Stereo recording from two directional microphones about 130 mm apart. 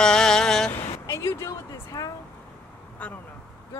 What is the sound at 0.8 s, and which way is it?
Speech, 20° left (ahead or behind).